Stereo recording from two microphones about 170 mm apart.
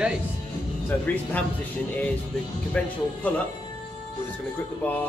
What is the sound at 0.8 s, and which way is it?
Speech, 10° left (ahead or behind).